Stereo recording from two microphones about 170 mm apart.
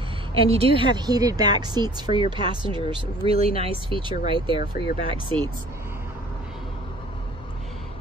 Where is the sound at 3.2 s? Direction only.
35° right (ahead or behind).